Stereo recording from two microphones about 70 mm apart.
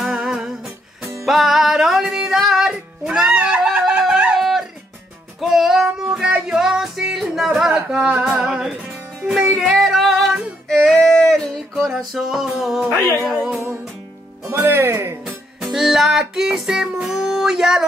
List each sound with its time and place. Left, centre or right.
0.0 s humming: centre
1.2 s music: centre
10.7 s a sound: centre
11.8 s music: centre
14.5 s speech: right
15.6 s music: centre